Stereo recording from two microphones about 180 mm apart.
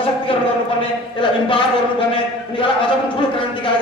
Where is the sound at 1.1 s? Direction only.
30° left (ahead or behind).